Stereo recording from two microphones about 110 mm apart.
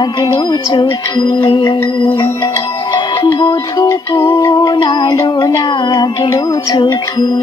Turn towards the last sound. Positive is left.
turn(degrees=40)  # may be behind; listen again after turning